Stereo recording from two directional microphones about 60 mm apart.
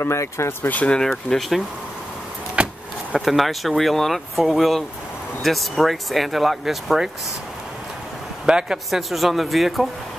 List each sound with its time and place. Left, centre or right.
0.0 s speech: left
0.6 s speech: left
0.8 s speech: centre
2.5 s a sound: centre
3.2 s speech: centre
8.5 s speech: centre
9.1 s speech: centre